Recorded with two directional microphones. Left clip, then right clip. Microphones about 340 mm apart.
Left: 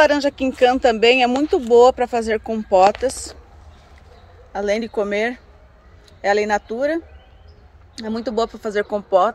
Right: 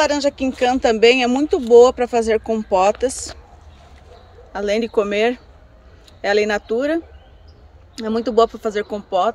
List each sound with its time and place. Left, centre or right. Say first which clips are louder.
0.0 s speech: left 2 dB; centre
4.5 s speech: right 1 dB; centre